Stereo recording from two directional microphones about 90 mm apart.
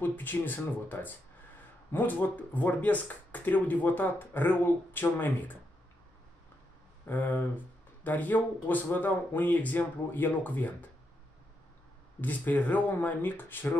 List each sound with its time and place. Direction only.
0.0 s speech: 20° left (ahead or behind)
7.1 s speech: 20° left (ahead or behind)
12.2 s speech: 20° left (ahead or behind)